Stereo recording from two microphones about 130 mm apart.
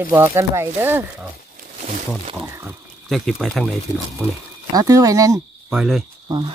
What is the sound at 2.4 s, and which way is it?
Speech, 15° right (ahead or behind).